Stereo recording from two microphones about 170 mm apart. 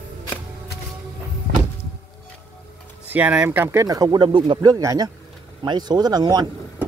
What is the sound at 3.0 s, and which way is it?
Speech, 10° right (ahead or behind).